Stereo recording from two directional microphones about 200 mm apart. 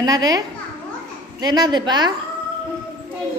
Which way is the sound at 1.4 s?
20° right (ahead or behind).